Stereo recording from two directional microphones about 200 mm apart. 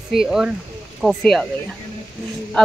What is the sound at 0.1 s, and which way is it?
Speech, centre (ahead or behind).